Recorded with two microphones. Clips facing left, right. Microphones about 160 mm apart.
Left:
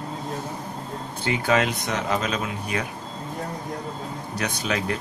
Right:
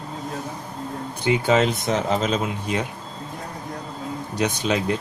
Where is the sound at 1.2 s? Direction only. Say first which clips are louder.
Right 3 dB; 25° right (ahead or behind).